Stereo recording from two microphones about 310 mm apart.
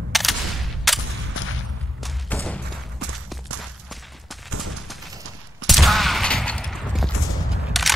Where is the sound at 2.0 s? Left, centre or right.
Centre.